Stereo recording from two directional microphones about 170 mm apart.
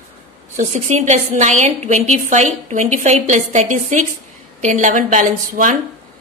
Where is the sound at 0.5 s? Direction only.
45° right (ahead or behind).